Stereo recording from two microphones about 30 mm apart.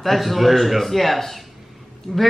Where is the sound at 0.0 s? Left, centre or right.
Centre.